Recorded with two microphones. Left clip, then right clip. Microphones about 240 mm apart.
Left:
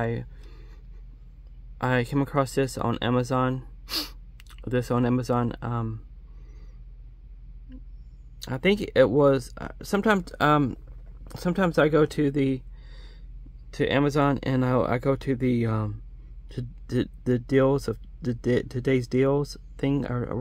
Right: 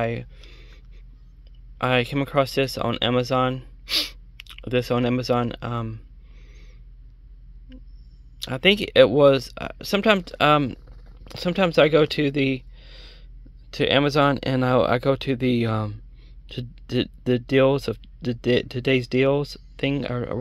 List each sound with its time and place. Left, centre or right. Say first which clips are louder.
1.8 s speech: right 4 dB; centre
8.4 s speech: right 5 dB; centre